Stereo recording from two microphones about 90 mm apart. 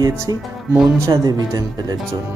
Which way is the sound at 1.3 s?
50° right (ahead or behind).